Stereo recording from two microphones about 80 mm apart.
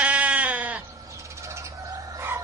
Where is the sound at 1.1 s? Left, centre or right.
Right.